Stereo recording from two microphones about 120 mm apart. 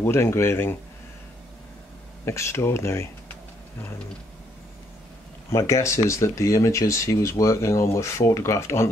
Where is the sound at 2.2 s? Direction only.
20° left (ahead or behind).